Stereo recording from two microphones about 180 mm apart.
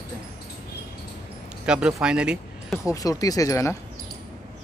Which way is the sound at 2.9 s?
20° left (ahead or behind).